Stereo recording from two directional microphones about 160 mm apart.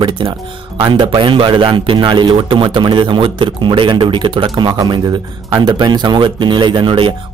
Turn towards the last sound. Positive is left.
turn(degrees=-30)  # may be behind; listen again after turning